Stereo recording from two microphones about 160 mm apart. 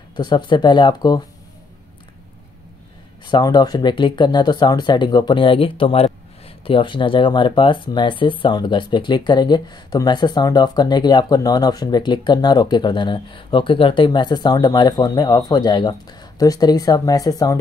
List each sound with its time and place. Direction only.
0.1 s speech: 30° left (ahead or behind)
3.3 s speech: 30° left (ahead or behind)